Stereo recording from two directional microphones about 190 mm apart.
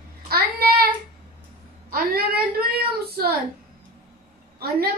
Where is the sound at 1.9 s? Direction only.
50° right (ahead or behind).